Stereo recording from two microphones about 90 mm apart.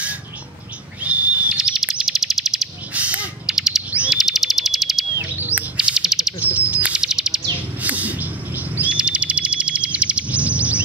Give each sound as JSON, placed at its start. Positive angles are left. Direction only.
{"t": 1.0, "sound": "owl", "side_deg": -15}
{"t": 1.6, "sound": "bird", "side_deg": -5}
{"t": 2.9, "sound": "a sound", "side_deg": -15}
{"t": 3.4, "sound": "a sound", "side_deg": -5}
{"t": 4.1, "sound": "alarm", "side_deg": -5}
{"t": 5.4, "sound": "bird", "side_deg": -15}
{"t": 6.4, "sound": "chirp", "side_deg": -15}
{"t": 7.8, "sound": "bird", "side_deg": -15}